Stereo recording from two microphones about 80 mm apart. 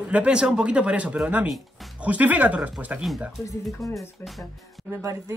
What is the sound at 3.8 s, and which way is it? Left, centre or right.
Speech, centre.